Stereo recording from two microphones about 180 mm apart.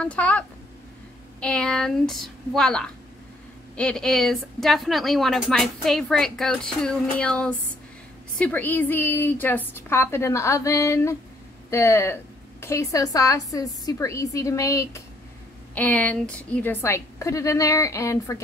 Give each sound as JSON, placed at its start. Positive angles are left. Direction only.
{"t": 0.0, "sound": "a woman's voice", "side_deg": 5}